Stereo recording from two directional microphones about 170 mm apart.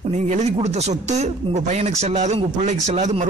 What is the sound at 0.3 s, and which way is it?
Speech, 40° right (ahead or behind).